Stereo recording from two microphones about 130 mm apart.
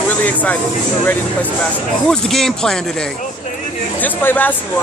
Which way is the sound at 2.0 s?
5° left (ahead or behind).